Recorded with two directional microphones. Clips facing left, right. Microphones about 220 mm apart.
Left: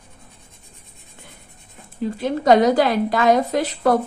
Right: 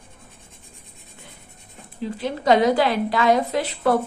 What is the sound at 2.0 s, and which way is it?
A woman's voice, 45° left (ahead or behind).